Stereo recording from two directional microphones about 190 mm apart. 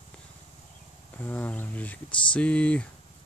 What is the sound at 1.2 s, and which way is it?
Speech, 10° left (ahead or behind).